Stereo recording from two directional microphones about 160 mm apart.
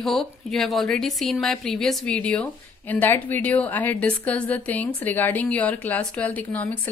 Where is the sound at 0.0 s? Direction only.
Centre (ahead or behind).